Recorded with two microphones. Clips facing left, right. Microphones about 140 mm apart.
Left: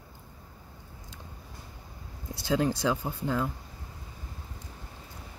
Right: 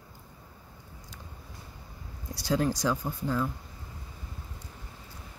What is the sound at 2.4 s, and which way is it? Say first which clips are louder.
Speech: left 1 dB; 20° left (ahead or behind).